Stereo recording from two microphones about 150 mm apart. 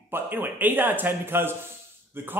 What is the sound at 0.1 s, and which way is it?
Speech, 15° right (ahead or behind).